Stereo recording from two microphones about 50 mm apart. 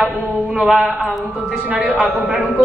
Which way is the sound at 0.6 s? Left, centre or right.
Centre.